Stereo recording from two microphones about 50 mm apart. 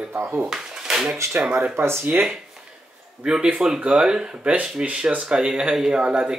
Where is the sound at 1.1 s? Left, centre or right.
Right.